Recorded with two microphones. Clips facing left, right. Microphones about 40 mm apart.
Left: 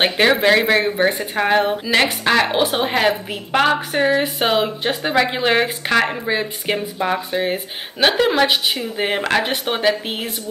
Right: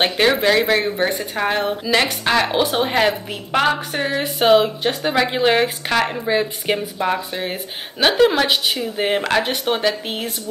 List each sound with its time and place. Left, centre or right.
0.0 s speech: centre